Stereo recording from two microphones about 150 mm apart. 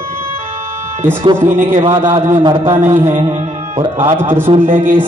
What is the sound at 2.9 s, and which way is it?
Mantra, 20° right (ahead or behind).